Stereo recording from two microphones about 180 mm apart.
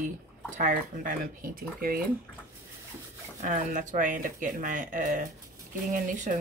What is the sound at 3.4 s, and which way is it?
Speech, 45° right (ahead or behind).